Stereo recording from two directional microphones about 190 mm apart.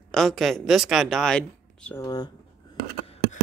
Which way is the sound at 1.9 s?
15° left (ahead or behind).